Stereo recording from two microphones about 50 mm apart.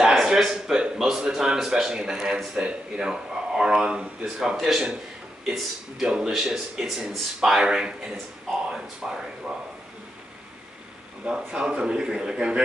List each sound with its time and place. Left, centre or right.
0.0 s a man's voice: centre
4.2 s a man's voice: centre
11.2 s a man's voice: centre